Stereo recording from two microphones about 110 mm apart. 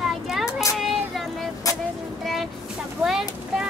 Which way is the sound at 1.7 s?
30° left (ahead or behind).